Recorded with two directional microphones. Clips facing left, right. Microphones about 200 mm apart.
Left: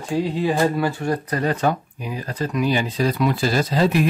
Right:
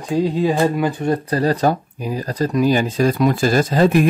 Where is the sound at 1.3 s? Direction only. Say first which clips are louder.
Right 4 dB; 35° right (ahead or behind).